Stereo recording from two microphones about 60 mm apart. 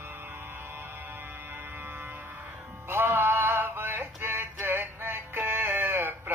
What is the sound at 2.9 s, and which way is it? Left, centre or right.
Music, right.